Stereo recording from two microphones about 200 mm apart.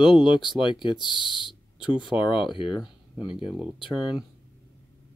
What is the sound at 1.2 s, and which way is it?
Speech, 25° left (ahead or behind).